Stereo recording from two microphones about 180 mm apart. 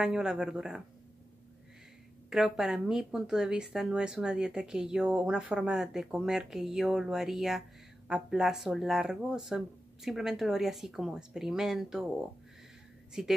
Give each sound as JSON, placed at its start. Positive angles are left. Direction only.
{"t": 0.0, "sound": "speech", "side_deg": -5}
{"t": 2.2, "sound": "speech", "side_deg": -5}
{"t": 13.2, "sound": "speech", "side_deg": 0}